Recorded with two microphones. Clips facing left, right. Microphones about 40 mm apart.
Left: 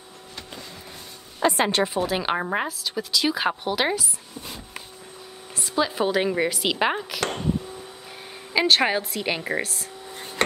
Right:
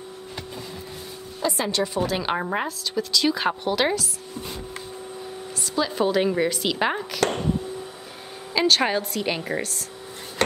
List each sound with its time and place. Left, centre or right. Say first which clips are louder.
1.4 s speech: left 3 dB; left
2.0 s a woman's voice: even; centre
5.6 s a woman's voice: even; centre
8.5 s a woman's voice: left 1 dB; centre